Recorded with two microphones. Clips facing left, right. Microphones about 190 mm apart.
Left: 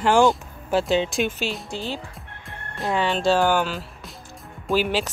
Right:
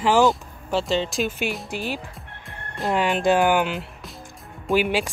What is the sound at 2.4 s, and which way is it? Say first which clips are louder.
Music: right 1 dB; centre (ahead or behind).